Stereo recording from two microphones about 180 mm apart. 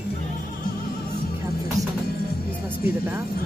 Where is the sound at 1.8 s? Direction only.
20° right (ahead or behind).